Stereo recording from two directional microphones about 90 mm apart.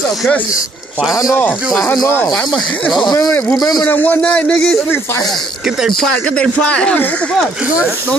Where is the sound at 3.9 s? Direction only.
20° left (ahead or behind).